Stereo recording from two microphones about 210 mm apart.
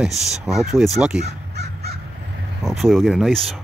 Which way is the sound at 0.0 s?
Centre (ahead or behind).